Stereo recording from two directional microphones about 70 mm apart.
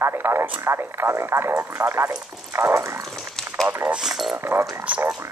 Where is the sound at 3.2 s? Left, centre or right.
Centre.